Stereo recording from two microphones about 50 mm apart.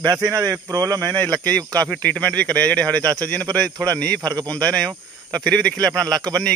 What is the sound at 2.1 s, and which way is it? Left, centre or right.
Speech, left.